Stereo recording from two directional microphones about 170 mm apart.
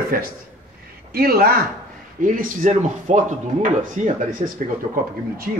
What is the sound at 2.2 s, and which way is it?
Speech, 50° right (ahead or behind).